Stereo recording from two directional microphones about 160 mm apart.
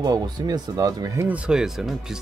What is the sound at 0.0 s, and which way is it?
Speech, 25° right (ahead or behind).